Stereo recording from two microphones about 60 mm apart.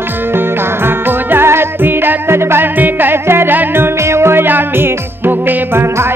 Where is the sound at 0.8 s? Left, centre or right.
Right.